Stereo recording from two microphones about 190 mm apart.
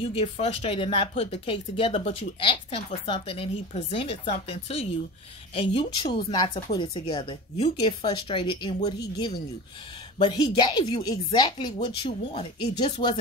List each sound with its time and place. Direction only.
0.0 s a woman's voice: 30° left (ahead or behind)